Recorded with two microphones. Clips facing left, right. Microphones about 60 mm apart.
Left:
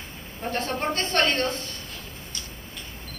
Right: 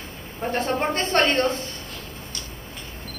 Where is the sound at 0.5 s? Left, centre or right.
Right.